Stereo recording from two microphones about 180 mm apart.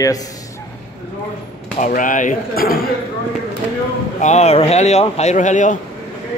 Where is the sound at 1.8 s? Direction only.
45° left (ahead or behind).